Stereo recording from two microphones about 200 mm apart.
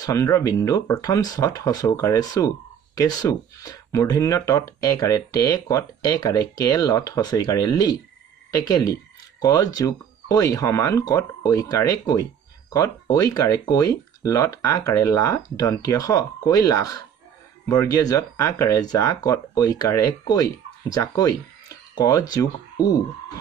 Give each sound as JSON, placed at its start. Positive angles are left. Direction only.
{"t": 0.0, "sound": "speech", "side_deg": 15}